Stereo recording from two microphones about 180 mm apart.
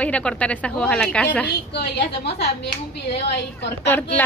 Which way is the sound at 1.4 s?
65° left (ahead or behind).